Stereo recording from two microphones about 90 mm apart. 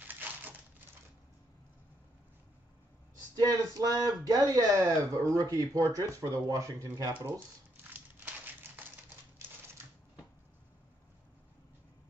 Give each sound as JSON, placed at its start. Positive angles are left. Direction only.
{"t": 0.0, "sound": "crushing", "side_deg": -20}
{"t": 3.3, "sound": "speech", "side_deg": -40}
{"t": 7.2, "sound": "speech", "side_deg": -20}